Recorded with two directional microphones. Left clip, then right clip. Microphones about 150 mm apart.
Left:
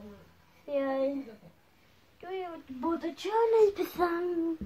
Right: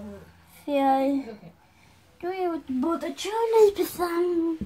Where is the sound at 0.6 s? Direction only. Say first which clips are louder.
Right 8 dB; 15° left (ahead or behind).